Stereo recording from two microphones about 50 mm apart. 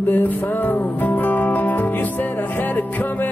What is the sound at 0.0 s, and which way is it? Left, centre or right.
Music, left.